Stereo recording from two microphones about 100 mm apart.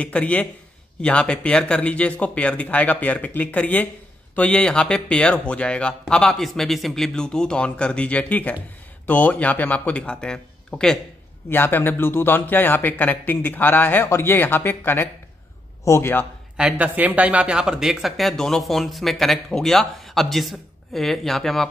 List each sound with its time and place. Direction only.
0.0 s speech: 15° left (ahead or behind)
11.5 s a man's voice: 20° left (ahead or behind)
16.5 s speech: 10° right (ahead or behind)